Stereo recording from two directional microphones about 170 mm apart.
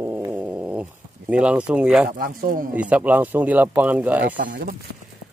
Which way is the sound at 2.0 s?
55° right (ahead or behind).